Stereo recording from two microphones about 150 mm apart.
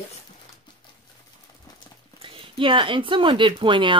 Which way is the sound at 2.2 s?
35° right (ahead or behind).